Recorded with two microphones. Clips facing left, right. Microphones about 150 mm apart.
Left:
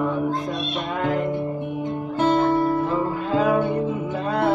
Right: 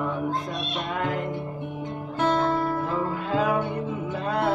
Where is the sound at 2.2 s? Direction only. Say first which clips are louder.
Left 4 dB; 10° left (ahead or behind).